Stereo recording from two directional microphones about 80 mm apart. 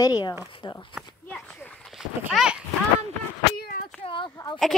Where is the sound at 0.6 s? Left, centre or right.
Left.